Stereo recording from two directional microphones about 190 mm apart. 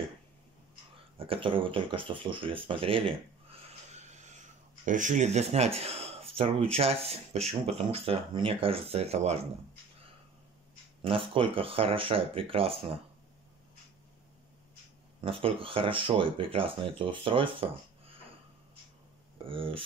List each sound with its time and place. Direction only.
1.1 s speech: 30° right (ahead or behind)
11.0 s speech: 30° right (ahead or behind)
15.2 s speech: 30° right (ahead or behind)
19.3 s speech: 30° right (ahead or behind)